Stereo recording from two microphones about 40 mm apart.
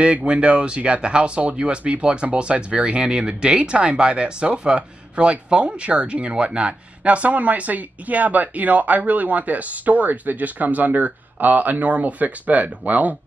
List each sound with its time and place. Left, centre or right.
0.0 s speech: right